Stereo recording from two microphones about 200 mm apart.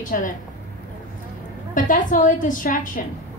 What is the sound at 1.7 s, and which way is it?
A woman's voice, 40° left (ahead or behind).